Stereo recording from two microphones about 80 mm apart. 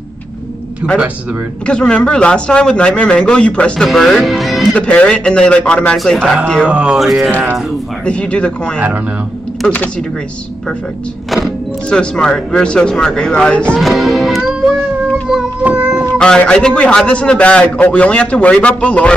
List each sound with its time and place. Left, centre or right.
1.7 s speech: centre
4.7 s speech: centre
5.9 s music: centre
6.7 s music: centre
7.0 s music: centre
8.0 s speech: centre
11.9 s speech: centre
13.7 s music: centre
15.6 s cat: centre
16.2 s speech: centre